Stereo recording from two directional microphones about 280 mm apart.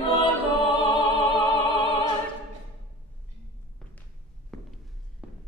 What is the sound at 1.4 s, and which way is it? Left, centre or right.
Music, centre.